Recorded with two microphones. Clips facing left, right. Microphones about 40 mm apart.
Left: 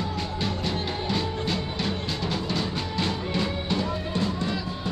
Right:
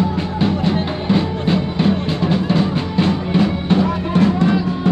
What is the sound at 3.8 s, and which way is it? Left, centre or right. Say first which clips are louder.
Music: right 11 dB; right.